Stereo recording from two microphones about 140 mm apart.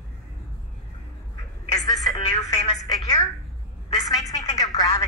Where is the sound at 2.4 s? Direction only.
50° left (ahead or behind).